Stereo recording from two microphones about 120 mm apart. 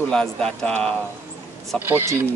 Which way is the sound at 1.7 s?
20° right (ahead or behind).